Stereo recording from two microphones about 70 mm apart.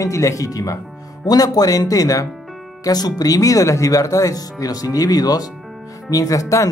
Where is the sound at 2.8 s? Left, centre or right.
Left.